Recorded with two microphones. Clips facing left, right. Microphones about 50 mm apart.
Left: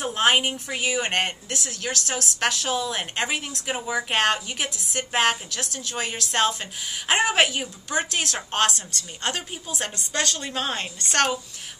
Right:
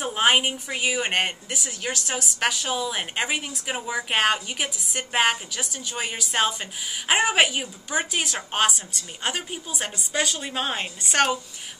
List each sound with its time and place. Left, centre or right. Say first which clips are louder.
0.0 s speech: even; centre